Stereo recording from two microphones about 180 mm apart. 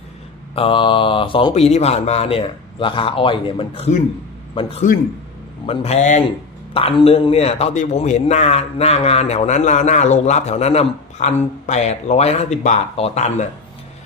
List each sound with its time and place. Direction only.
0.6 s a man's voice: 30° left (ahead or behind)